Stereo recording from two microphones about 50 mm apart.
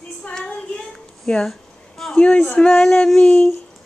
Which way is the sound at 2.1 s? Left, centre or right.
Centre.